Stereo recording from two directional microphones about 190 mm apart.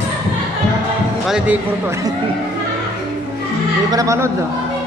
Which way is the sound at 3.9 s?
15° right (ahead or behind).